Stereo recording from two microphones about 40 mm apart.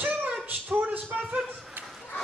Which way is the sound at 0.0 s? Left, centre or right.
Right.